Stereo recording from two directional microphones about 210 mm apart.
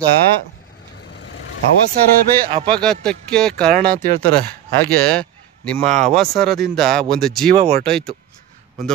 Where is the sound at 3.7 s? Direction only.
45° right (ahead or behind).